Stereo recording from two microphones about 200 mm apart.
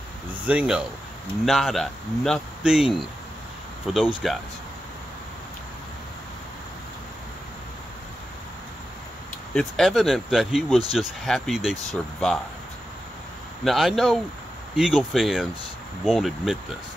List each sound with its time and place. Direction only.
0.5 s speech: 5° right (ahead or behind)
9.5 s speech: centre (ahead or behind)
13.7 s speech: centre (ahead or behind)